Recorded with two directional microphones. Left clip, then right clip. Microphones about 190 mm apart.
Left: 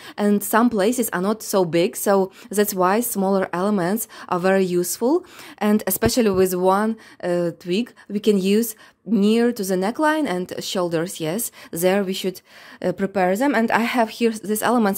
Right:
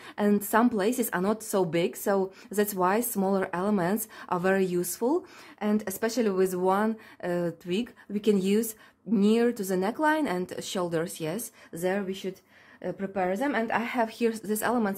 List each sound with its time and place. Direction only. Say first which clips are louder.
0.2 s a woman's voice: left 6 dB; 30° left (ahead or behind)
5.6 s a woman's voice: left 9 dB; 40° left (ahead or behind)
11.7 s a woman's voice: left 10 dB; 50° left (ahead or behind)
14.0 s a woman's voice: left 6 dB; 35° left (ahead or behind)